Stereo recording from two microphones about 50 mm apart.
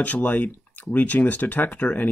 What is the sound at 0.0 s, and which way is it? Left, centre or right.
Speech, left.